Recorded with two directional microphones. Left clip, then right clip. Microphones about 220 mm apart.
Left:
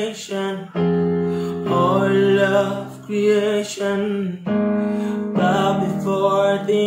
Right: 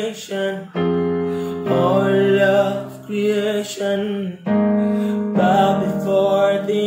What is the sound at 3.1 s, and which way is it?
Music, 10° left (ahead or behind).